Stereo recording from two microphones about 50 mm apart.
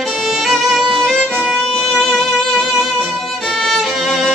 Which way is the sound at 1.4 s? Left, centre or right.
Centre.